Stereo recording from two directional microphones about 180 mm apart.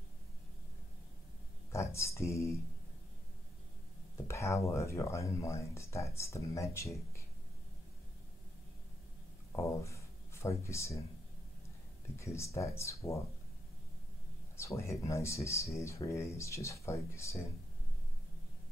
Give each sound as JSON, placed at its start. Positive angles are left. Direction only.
{"t": 1.7, "sound": "speech", "side_deg": 15}
{"t": 4.3, "sound": "speech", "side_deg": 15}
{"t": 9.5, "sound": "speech", "side_deg": 15}
{"t": 12.2, "sound": "speech", "side_deg": 15}
{"t": 14.6, "sound": "speech", "side_deg": 15}